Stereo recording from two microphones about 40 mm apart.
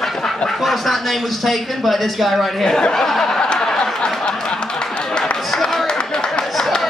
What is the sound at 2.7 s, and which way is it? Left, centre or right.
Speech, left.